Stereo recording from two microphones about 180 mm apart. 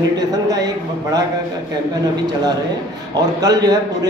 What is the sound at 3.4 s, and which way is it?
Speech, 20° right (ahead or behind).